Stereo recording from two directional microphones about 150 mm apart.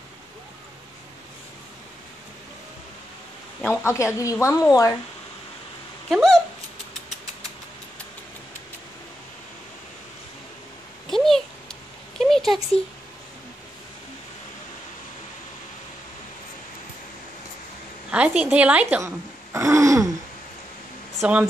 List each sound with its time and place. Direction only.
3.8 s a woman's voice: 20° left (ahead or behind)
6.0 s speech: centre (ahead or behind)
11.1 s a sound: centre (ahead or behind)
18.1 s speech: 10° right (ahead or behind)
21.1 s speech: 5° right (ahead or behind)